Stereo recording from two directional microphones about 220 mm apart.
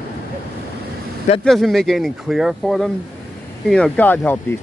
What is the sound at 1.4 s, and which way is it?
Speech, centre (ahead or behind).